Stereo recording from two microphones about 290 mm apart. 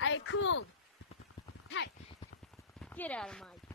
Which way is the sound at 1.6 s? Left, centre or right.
Left.